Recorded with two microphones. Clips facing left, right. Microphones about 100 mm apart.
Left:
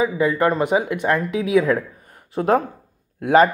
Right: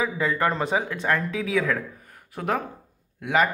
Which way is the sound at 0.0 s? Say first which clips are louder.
Left 6 dB; 10° left (ahead or behind).